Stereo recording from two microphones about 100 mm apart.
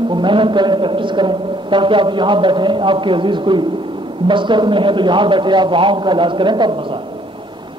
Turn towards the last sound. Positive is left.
turn(degrees=-50)  # may be behind; listen again after turning